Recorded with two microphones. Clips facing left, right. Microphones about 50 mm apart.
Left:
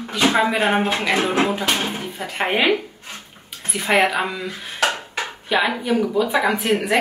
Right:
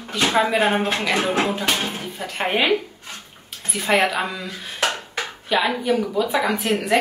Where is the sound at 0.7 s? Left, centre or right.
Left.